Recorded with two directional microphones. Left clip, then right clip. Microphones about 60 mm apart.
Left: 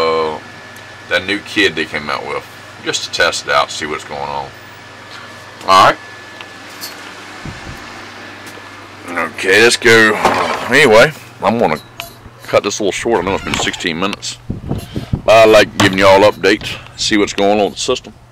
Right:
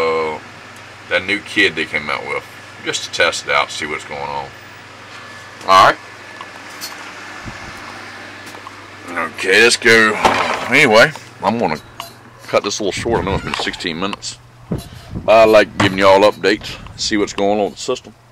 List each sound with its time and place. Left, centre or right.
0.0 s a sound: centre
1.1 s speech: centre
5.7 s speech: centre
9.0 s a sound: centre
9.8 s speech: centre
10.2 s speech: centre
10.7 s speech: centre
11.1 s speech: left
13.1 s speech: centre
15.2 s speech: left
15.8 s speech: left